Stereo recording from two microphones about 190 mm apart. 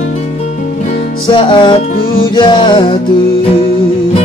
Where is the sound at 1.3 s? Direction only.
25° left (ahead or behind).